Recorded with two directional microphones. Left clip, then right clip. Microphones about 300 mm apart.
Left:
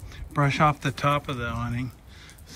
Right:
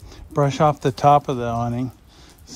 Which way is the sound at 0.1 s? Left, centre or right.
Centre.